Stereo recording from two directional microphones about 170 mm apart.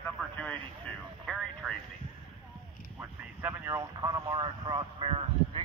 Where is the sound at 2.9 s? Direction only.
15° right (ahead or behind).